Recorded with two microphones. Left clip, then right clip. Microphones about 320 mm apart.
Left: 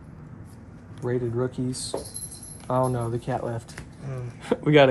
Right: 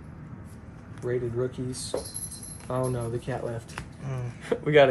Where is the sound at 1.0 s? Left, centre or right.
Centre.